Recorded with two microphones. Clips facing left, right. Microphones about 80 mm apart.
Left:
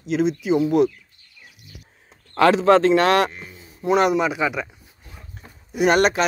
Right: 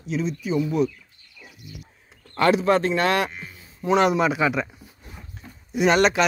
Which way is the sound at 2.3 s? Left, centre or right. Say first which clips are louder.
Left 4 dB; left.